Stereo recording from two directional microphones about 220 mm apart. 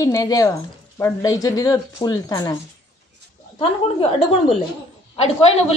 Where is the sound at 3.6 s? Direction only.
25° left (ahead or behind).